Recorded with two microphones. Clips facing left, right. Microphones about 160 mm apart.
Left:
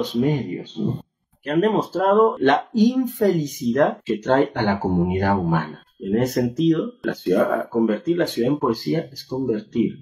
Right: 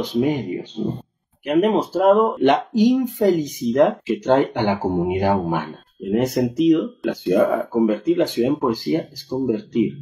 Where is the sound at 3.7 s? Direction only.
15° right (ahead or behind).